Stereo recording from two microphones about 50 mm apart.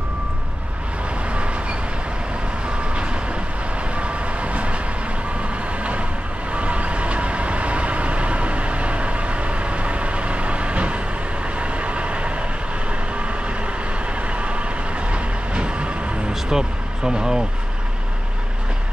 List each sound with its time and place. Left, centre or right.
1.3 s train: right
2.9 s vehicle: right
5.8 s vehicle: right
14.2 s vehicle: right